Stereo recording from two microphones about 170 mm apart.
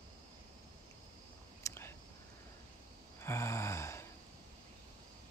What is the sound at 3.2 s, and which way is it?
Gasp, 15° left (ahead or behind).